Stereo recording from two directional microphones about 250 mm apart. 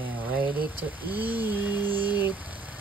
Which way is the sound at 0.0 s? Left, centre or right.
Centre.